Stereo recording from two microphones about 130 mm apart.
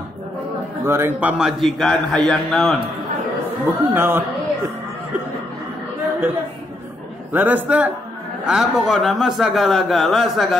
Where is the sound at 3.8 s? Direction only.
15° right (ahead or behind).